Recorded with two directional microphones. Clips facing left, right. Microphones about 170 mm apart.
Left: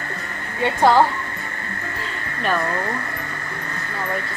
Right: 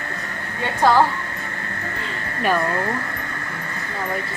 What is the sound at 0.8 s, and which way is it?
Speech, 15° left (ahead or behind).